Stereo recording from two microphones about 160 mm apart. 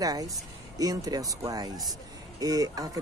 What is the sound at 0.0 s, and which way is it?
Speech, 20° right (ahead or behind).